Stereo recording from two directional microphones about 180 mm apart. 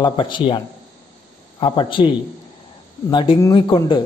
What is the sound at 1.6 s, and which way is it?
Speech, 25° left (ahead or behind).